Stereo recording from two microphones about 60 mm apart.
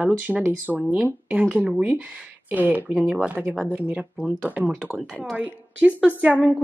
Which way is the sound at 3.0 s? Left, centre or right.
Centre.